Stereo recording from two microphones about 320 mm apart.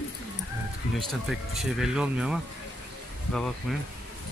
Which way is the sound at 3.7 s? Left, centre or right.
Centre.